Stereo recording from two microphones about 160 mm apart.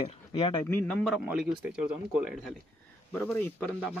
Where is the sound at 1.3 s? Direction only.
5° right (ahead or behind).